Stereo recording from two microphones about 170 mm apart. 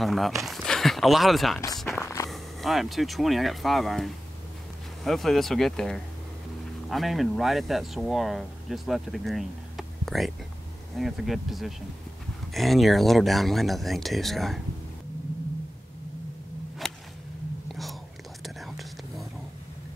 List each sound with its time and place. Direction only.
0.0 s speech: centre (ahead or behind)
1.9 s walk: 15° left (ahead or behind)
2.3 s speech: centre (ahead or behind)
16.8 s whip: centre (ahead or behind)
18.4 s whispering: centre (ahead or behind)